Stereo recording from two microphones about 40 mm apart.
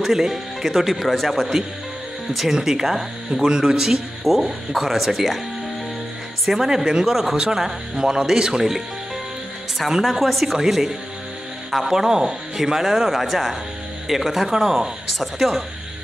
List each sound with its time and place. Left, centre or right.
0.0 s speech: centre
4.2 s speech: centre
6.4 s speech: centre
7.1 s speech: centre
10.1 s speech: centre